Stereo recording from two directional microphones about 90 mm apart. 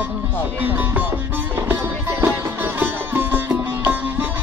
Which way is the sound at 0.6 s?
20° right (ahead or behind).